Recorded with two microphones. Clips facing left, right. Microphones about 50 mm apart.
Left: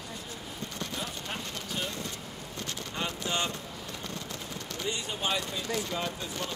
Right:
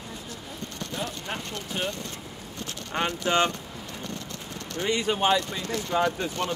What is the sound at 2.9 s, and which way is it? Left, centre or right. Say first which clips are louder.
Speech: right 9 dB; right.